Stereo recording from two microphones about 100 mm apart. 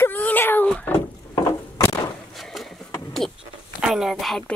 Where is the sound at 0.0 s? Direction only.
15° left (ahead or behind).